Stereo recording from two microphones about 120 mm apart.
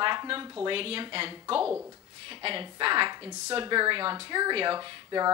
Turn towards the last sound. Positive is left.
turn(degrees=-40)  # may be behind; listen again after turning